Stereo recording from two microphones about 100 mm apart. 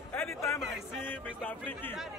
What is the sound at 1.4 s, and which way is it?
Speech, 20° left (ahead or behind).